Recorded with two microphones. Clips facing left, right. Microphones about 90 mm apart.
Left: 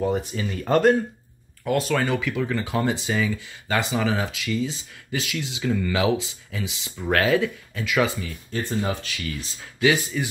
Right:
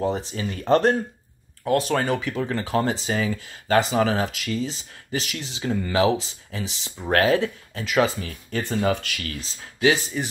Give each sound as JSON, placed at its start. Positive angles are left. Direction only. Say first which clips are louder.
{"t": 0.0, "sound": "speech", "louder": "left 1 dB", "side_deg": -30}
{"t": 8.3, "sound": "speech", "louder": "right 1 dB", "side_deg": -65}
{"t": 9.4, "sound": "speech", "louder": "right 1 dB", "side_deg": -35}